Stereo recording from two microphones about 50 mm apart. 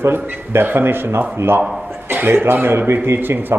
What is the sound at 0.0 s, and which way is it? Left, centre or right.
A man's voice, right.